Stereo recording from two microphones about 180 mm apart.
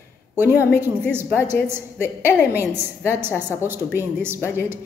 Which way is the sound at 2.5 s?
10° right (ahead or behind).